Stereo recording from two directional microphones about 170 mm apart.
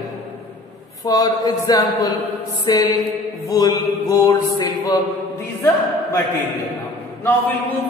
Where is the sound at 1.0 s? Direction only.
20° left (ahead or behind).